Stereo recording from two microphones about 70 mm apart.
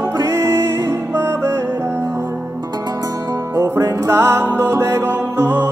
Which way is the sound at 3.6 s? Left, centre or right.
Right.